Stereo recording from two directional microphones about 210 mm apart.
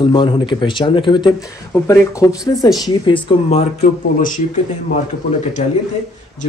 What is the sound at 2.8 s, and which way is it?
Speech, 25° left (ahead or behind).